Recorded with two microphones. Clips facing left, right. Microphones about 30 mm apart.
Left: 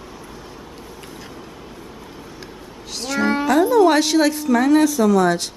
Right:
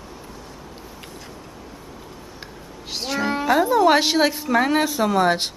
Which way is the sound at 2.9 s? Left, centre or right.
Right.